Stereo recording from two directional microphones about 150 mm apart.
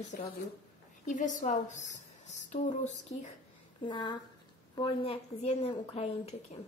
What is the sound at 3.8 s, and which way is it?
Speech, 30° left (ahead or behind).